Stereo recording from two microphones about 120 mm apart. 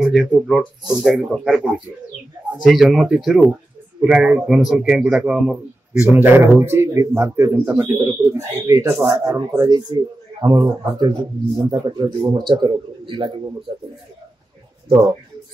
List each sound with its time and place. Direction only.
0.0 s a man's voice: centre (ahead or behind); by 13.3 s 45° right (ahead or behind)